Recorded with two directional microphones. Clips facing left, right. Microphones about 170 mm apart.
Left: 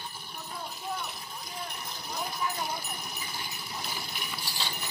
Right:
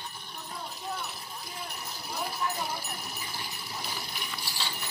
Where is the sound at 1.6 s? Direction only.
5° right (ahead or behind).